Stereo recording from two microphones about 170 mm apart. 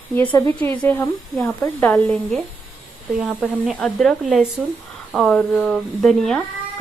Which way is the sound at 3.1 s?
5° right (ahead or behind).